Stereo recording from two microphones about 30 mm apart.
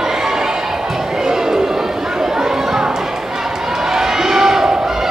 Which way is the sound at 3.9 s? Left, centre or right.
Centre.